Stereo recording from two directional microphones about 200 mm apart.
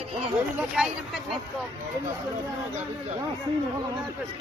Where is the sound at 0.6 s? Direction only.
5° right (ahead or behind).